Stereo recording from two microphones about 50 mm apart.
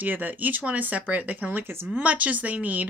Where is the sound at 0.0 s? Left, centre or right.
Right.